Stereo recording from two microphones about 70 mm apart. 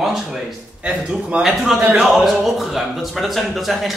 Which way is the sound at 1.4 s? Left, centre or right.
Centre.